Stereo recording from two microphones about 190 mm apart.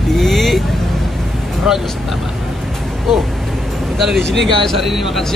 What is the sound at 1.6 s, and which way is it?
Speech, centre (ahead or behind).